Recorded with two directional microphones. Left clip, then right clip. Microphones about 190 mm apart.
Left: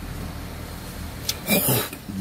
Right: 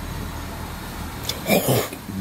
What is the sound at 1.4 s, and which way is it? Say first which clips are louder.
Speech: right 4 dB; 5° right (ahead or behind).